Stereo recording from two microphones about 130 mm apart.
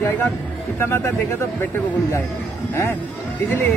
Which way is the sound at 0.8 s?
20° left (ahead or behind).